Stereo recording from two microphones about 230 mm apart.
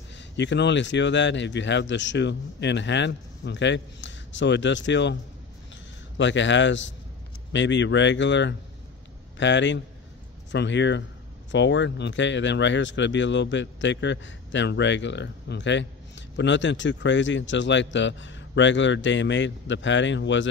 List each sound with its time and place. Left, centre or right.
0.1 s speech: left
6.1 s speech: left